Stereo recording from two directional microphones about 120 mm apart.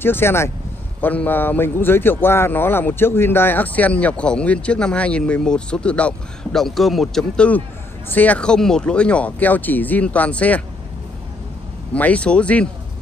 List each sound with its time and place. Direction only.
0.0 s speech: 20° left (ahead or behind)
11.9 s speech: 10° left (ahead or behind)